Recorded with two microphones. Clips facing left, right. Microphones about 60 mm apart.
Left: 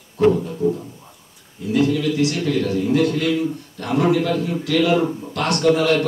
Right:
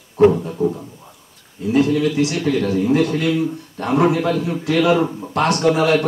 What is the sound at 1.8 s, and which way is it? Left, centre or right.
A man's voice, right.